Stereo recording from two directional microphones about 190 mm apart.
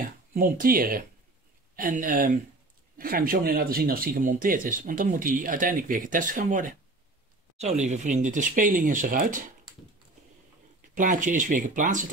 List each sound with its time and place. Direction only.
0.0 s speech: 50° right (ahead or behind)
11.0 s speech: 45° right (ahead or behind)